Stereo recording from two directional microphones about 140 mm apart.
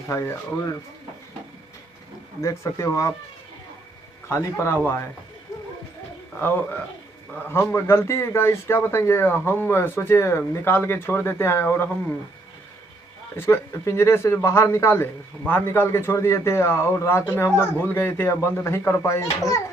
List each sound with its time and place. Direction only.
0.1 s speech: 20° left (ahead or behind)
2.4 s speech: 20° left (ahead or behind)
4.3 s speech: 20° left (ahead or behind)
7.7 s speech: 15° left (ahead or behind)
13.4 s speech: 20° left (ahead or behind)